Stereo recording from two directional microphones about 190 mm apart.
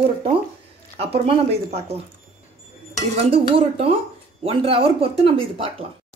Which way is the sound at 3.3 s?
30° right (ahead or behind).